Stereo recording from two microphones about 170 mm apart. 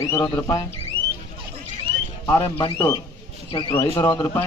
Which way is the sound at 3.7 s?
15° left (ahead or behind).